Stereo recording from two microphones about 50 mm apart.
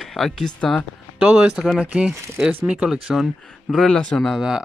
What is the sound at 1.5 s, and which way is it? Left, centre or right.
Speech, centre.